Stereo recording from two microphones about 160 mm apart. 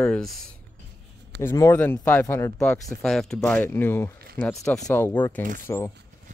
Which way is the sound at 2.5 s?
Centre (ahead or behind).